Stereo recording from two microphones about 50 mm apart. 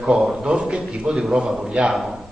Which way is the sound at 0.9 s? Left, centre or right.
Right.